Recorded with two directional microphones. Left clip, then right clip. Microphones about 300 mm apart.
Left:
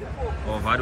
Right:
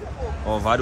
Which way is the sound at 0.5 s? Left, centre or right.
Centre.